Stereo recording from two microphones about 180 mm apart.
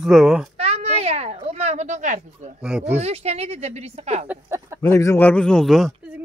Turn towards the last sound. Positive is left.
turn(degrees=0)  # may be behind; listen again after turning